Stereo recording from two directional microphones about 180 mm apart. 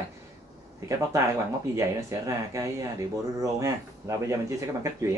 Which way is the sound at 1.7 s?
15° right (ahead or behind).